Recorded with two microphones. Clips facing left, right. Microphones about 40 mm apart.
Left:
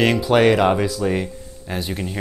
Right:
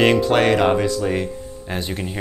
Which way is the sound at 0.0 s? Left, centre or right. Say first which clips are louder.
Even; centre.